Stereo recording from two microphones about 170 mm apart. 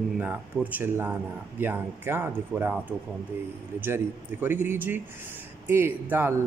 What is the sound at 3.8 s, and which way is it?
A man's voice, 15° right (ahead or behind).